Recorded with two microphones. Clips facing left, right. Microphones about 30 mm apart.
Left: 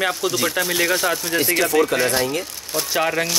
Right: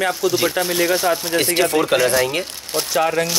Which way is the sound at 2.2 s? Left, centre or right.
Right.